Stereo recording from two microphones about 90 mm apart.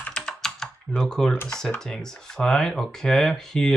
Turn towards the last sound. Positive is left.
turn(degrees=5)  # may be behind; listen again after turning